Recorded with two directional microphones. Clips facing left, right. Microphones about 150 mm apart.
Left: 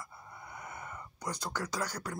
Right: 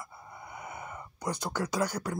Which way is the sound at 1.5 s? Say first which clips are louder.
Right 8 dB; 15° right (ahead or behind).